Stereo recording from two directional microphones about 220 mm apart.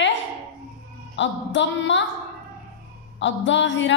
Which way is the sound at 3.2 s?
55° left (ahead or behind).